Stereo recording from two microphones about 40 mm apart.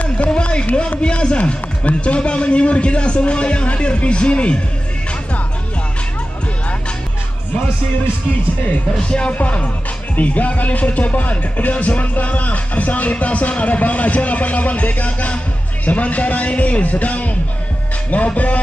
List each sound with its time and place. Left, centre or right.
0.3 s speech: left
9.3 s music: left